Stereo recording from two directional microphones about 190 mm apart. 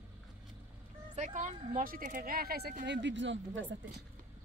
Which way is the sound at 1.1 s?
40° right (ahead or behind).